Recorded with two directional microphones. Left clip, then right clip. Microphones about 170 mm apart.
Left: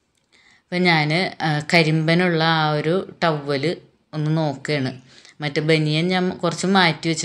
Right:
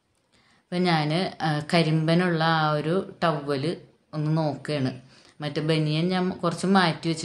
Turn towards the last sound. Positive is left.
turn(degrees=15)  # may be behind; listen again after turning